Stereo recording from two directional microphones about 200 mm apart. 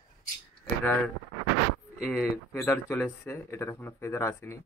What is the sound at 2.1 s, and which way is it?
Speech, 10° left (ahead or behind).